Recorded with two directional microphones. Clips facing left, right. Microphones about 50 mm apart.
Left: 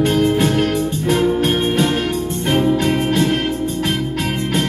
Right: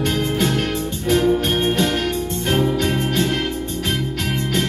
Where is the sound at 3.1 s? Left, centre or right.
Left.